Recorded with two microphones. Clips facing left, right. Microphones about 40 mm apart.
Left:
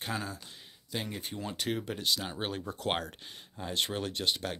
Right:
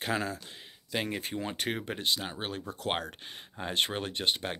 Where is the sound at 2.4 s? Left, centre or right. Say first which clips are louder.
Left 1 dB; centre.